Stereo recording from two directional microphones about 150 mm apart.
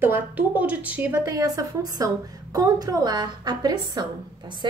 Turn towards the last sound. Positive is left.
turn(degrees=-30)  # may be behind; listen again after turning